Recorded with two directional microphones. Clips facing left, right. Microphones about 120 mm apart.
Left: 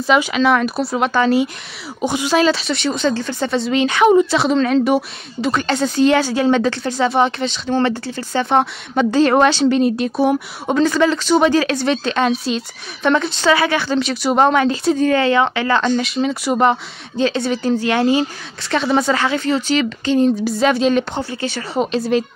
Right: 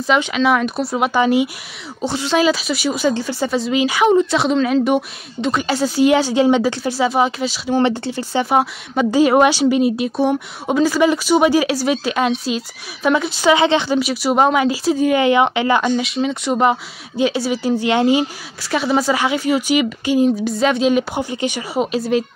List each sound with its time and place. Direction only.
0.0 s a woman's voice: centre (ahead or behind)
1.0 s speech: 15° right (ahead or behind)
2.0 s speech: 15° left (ahead or behind)
2.3 s a woman's voice: 5° right (ahead or behind)
6.8 s speech: 5° right (ahead or behind)
13.6 s a woman's voice: 20° right (ahead or behind)
13.9 s speech: 5° right (ahead or behind)
16.0 s a woman's voice: centre (ahead or behind); by 18.2 s 15° right (ahead or behind)
18.6 s speech: 5° right (ahead or behind)
20.4 s speech: centre (ahead or behind)